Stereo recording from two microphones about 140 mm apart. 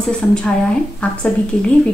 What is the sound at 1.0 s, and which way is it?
Speech, 10° left (ahead or behind).